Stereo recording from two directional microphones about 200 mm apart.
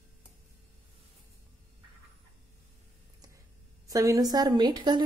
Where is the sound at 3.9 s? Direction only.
15° right (ahead or behind).